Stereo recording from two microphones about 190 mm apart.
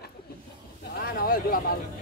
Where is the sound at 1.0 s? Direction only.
50° left (ahead or behind).